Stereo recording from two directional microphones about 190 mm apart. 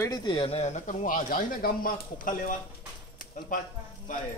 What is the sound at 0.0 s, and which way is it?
Speech, 20° left (ahead or behind).